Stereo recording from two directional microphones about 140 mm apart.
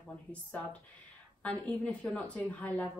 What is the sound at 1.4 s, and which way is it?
A woman's voice, 10° left (ahead or behind).